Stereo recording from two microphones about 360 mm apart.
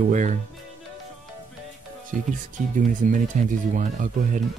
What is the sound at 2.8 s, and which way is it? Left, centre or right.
Speech, right.